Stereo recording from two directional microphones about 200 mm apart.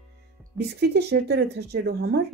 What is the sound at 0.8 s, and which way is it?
Speech, 55° right (ahead or behind).